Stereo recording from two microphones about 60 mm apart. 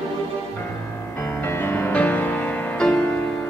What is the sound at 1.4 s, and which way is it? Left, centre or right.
Music, left.